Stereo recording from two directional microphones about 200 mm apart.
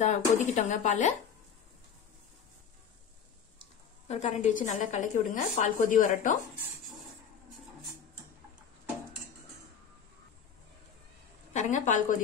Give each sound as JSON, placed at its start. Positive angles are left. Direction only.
{"t": 0.0, "sound": "a woman's voice", "side_deg": 35}
{"t": 4.1, "sound": "a woman's voice", "side_deg": 35}
{"t": 11.5, "sound": "a woman's voice", "side_deg": 40}